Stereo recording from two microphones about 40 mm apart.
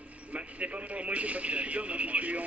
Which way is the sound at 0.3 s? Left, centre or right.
Right.